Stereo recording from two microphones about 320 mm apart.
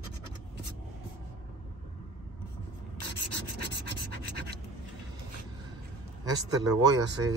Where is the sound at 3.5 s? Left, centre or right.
Right.